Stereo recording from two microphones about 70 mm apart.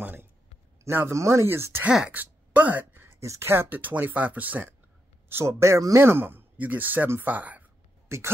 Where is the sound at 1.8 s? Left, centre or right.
Centre.